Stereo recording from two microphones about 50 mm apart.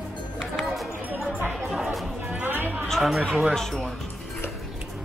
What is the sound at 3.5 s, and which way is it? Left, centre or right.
Speech, centre.